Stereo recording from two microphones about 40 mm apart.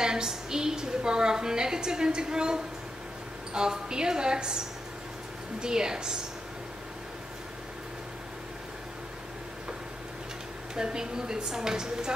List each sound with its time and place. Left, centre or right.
0.0 s a woman's voice: centre
10.7 s a woman's voice: centre